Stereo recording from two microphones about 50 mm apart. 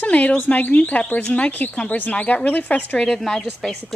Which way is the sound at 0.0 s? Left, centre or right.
Left.